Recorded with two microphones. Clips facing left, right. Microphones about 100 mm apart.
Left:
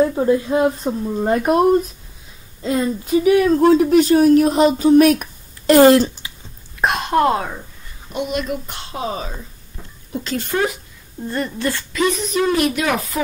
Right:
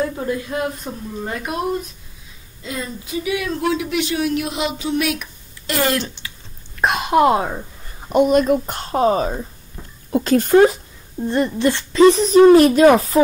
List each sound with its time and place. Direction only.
0.0 s a woman's voice: 25° left (ahead or behind); by 5.9 s 40° left (ahead or behind)
6.2 s a sound: 20° left (ahead or behind)
6.8 s speech: centre (ahead or behind); by 7.6 s 20° right (ahead or behind)
8.1 s speech: 45° right (ahead or behind)
11.1 s speech: 20° right (ahead or behind)